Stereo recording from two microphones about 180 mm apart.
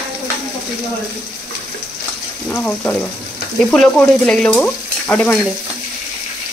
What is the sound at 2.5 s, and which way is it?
Speech, 10° left (ahead or behind).